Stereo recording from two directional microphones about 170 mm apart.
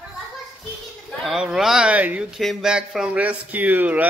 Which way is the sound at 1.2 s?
5° right (ahead or behind).